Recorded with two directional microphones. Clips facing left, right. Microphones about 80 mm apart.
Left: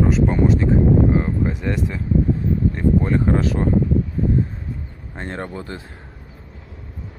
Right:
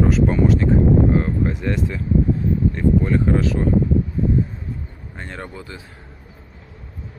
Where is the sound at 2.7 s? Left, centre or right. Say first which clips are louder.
Even; left.